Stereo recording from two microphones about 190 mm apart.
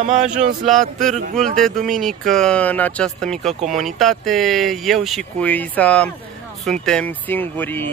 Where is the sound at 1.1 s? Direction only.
40° right (ahead or behind).